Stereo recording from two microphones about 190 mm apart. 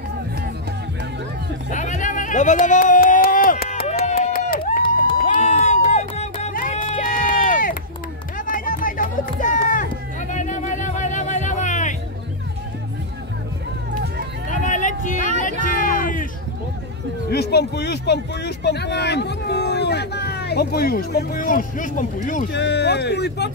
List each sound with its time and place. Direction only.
1.7 s a sound: 40° left (ahead or behind)
4.0 s a sound: 35° left (ahead or behind)
4.8 s music: 25° left (ahead or behind); by 6.9 s 45° left (ahead or behind)
7.0 s run: 45° left (ahead or behind)
10.3 s music: 40° left (ahead or behind)
14.5 s vehicle: 40° left (ahead or behind)
15.6 s music: 45° left (ahead or behind)
17.3 s a sound: 60° left (ahead or behind); by 22.4 s 45° left (ahead or behind)
22.5 s speech: 60° left (ahead or behind)